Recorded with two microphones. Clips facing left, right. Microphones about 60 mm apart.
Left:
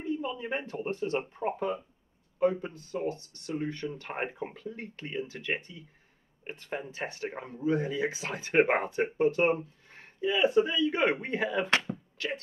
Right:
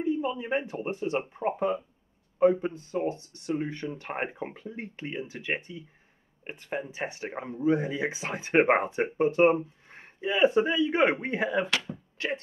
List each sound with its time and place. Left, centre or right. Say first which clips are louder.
0.0 s speech: right 5 dB; centre
2.3 s speech: right 5 dB; right